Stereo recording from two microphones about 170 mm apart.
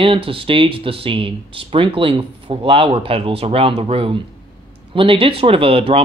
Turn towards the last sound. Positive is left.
turn(degrees=-35)  # may be behind; listen again after turning